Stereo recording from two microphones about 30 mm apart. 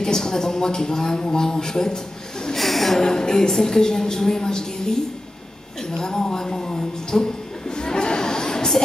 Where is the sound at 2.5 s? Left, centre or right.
Centre.